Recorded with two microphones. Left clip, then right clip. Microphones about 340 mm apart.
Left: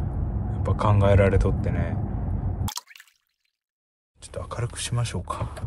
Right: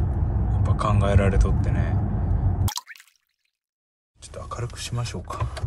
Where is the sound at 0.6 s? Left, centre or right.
Centre.